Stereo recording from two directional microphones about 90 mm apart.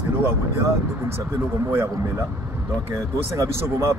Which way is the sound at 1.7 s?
30° right (ahead or behind).